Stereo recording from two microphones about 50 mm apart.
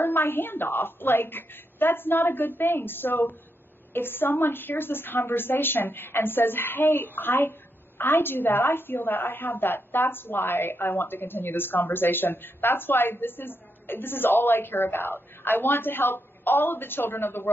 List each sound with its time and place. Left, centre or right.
0.0 s a woman's voice: left